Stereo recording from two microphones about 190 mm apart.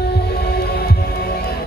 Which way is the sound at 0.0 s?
60° left (ahead or behind).